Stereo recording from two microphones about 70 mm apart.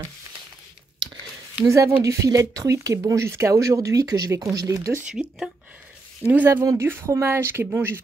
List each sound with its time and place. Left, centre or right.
1.7 s speech: right
5.2 s speech: centre
6.5 s speech: right